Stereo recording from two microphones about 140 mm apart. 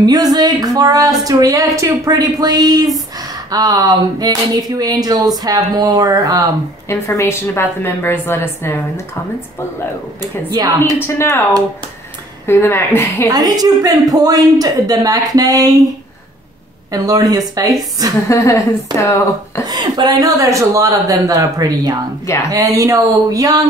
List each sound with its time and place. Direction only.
0.0 s speech: 25° right (ahead or behind)
6.9 s a woman's voice: 20° left (ahead or behind)
10.2 s speech: 25° right (ahead or behind)
11.1 s a woman's voice: 20° left (ahead or behind)
12.4 s a woman's voice: 15° left (ahead or behind)
13.3 s speech: 25° right (ahead or behind)
16.9 s speech: 25° right (ahead or behind)
18.3 s speech: 25° left (ahead or behind)
19.6 s speech: 30° right (ahead or behind)